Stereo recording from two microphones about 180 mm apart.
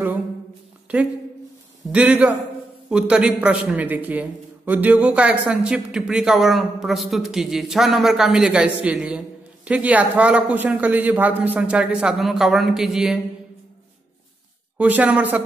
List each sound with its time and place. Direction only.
1.9 s a man's voice: 5° right (ahead or behind)
14.8 s a man's voice: 10° right (ahead or behind)